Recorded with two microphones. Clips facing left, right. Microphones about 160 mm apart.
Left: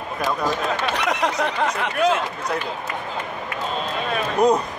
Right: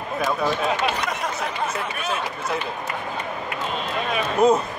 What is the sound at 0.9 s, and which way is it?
Speech, 75° left (ahead or behind).